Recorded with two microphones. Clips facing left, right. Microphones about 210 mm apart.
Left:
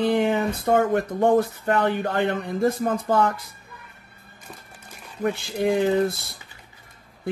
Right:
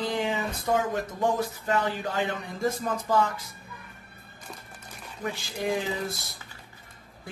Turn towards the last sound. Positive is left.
turn(degrees=60)  # may be behind; listen again after turning